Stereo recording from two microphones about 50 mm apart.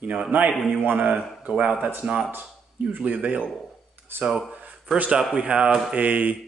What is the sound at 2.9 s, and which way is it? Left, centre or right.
Speech, right.